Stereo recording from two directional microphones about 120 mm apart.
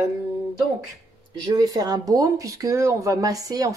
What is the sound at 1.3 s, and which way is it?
Speech, 35° right (ahead or behind).